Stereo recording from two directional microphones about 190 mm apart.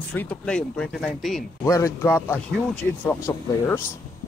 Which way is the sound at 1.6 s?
15° left (ahead or behind).